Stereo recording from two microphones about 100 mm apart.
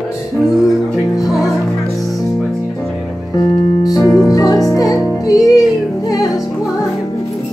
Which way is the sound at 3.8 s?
35° left (ahead or behind).